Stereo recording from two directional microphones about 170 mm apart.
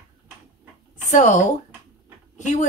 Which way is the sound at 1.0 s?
45° left (ahead or behind).